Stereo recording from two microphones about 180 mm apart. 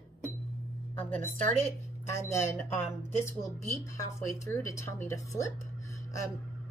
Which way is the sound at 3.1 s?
15° left (ahead or behind).